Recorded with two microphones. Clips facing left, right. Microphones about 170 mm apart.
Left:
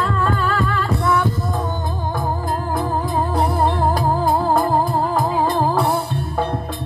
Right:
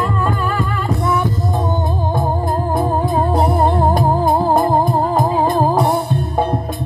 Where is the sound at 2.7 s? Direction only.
25° right (ahead or behind).